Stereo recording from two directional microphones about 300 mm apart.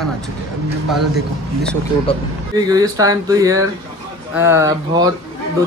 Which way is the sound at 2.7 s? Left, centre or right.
Centre.